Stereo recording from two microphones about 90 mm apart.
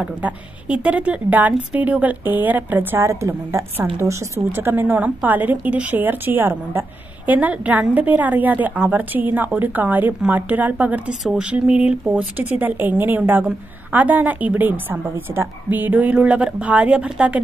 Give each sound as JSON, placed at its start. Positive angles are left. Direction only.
{"t": 0.0, "sound": "a woman's voice", "side_deg": -15}